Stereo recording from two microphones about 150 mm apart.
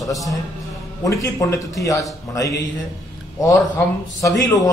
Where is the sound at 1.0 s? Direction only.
20° left (ahead or behind).